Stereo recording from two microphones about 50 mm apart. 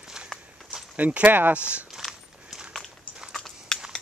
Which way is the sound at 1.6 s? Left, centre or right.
Right.